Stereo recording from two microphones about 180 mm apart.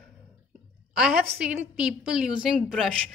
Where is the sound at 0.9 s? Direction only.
5° right (ahead or behind).